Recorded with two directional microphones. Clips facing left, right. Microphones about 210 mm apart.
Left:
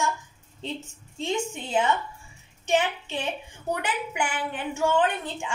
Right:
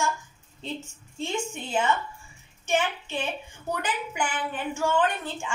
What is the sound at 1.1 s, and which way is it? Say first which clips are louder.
A woman's voice: left 2 dB; 15° left (ahead or behind).